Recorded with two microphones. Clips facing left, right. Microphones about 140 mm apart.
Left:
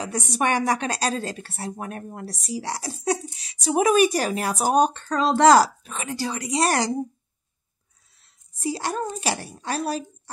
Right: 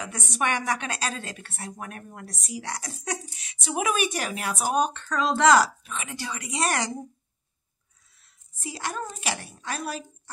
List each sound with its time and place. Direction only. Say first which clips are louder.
0.0 s a woman's voice: left 4 dB; 35° left (ahead or behind)
8.5 s a woman's voice: left 6 dB; 35° left (ahead or behind)